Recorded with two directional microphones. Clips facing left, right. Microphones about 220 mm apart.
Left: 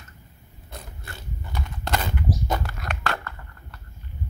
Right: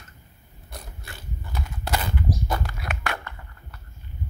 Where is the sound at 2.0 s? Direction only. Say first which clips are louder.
Left 1 dB; 20° left (ahead or behind).